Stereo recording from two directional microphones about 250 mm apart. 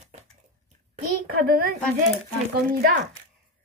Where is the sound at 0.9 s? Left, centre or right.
Right.